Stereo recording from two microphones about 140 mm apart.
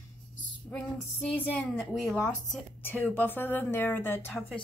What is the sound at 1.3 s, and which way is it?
A woman's voice, 10° left (ahead or behind).